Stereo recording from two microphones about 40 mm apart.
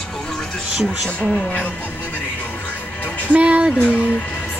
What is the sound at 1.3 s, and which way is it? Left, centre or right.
Speech, left.